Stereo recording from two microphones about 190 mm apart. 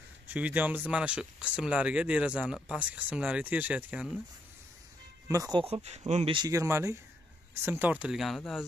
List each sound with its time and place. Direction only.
0.3 s speech: 10° right (ahead or behind)
5.3 s speech: 20° right (ahead or behind); by 6.3 s 35° right (ahead or behind)
6.3 s speech: 20° right (ahead or behind); by 8.6 s centre (ahead or behind)